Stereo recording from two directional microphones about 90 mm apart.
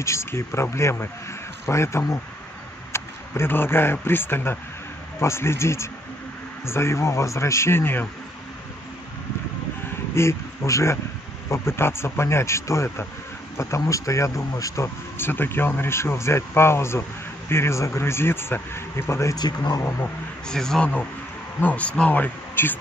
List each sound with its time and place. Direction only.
0.0 s speech: 30° left (ahead or behind)
10.1 s speech: 30° left (ahead or behind)
19.3 s speech: 50° left (ahead or behind)
19.8 s speech: 30° left (ahead or behind)
20.4 s speech: 5° left (ahead or behind)
21.5 s speech: 15° left (ahead or behind)